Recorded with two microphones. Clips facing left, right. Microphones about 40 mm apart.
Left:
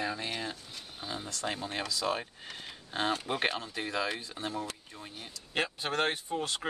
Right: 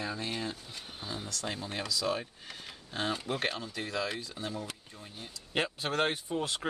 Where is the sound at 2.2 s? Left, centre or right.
Centre.